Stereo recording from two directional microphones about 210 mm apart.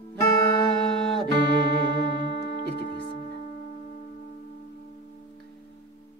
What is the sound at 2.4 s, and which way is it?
Music, 45° left (ahead or behind).